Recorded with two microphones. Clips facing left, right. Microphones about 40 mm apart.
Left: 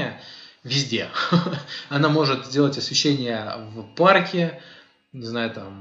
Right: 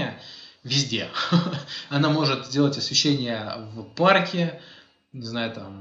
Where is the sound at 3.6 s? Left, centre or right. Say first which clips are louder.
Left 1 dB; left.